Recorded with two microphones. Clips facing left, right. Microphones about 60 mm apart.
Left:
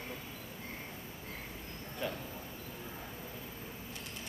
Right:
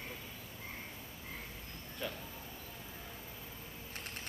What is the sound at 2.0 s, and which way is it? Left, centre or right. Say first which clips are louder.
Speech: left 4 dB; centre.